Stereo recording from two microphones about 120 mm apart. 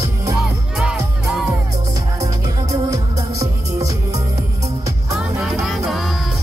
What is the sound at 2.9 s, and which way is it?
Music, 30° right (ahead or behind).